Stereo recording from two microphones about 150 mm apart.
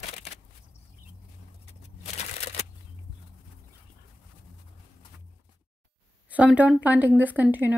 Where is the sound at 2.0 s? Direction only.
45° left (ahead or behind).